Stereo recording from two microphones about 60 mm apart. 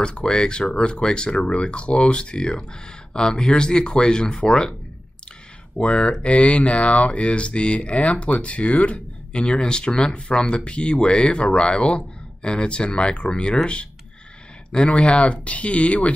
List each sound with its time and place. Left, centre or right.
0.0 s speech: centre
5.8 s speech: centre
14.7 s speech: centre